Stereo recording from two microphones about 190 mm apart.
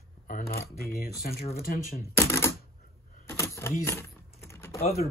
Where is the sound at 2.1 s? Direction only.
15° left (ahead or behind).